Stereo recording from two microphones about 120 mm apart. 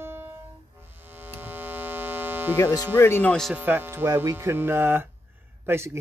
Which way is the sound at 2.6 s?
30° left (ahead or behind).